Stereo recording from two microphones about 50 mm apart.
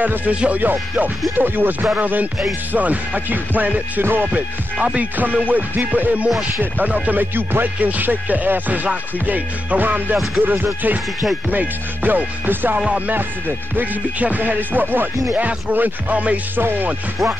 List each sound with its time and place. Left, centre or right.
0.0 s music: right
4.0 s music: right
4.9 s music: right
12.7 s music: right
14.2 s music: right
16.5 s music: right